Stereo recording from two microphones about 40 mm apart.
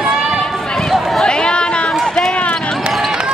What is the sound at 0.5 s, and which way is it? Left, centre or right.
Run, centre.